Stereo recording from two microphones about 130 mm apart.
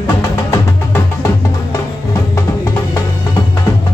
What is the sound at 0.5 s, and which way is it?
Music, 20° left (ahead or behind).